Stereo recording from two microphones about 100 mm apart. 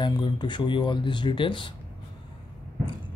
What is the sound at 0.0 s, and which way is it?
Speech, 50° left (ahead or behind).